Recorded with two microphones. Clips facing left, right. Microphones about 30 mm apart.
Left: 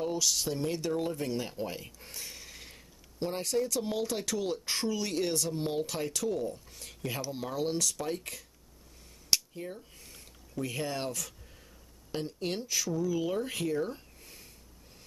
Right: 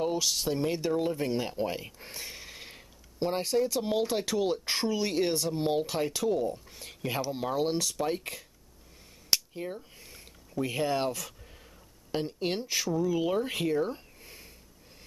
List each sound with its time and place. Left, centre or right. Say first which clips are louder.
0.0 s speech: right 2 dB; centre